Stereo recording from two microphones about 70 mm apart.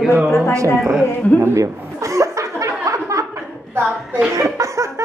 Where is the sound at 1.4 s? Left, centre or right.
Right.